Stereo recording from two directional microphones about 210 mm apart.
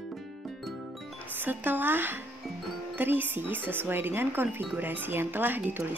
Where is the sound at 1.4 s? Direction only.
10° right (ahead or behind).